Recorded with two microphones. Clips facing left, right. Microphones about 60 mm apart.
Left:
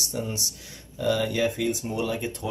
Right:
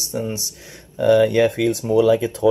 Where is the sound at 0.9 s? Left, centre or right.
Right.